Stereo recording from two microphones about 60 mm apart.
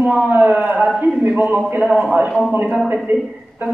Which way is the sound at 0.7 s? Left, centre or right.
Right.